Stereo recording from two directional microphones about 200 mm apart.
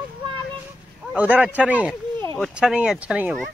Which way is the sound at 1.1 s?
5° right (ahead or behind).